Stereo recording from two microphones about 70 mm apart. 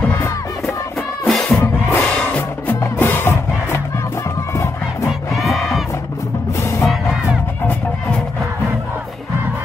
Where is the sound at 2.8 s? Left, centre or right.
Left.